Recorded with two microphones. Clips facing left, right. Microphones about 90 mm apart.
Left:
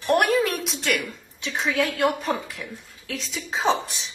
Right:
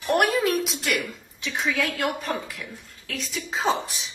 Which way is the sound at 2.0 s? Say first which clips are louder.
Left 4 dB; centre (ahead or behind).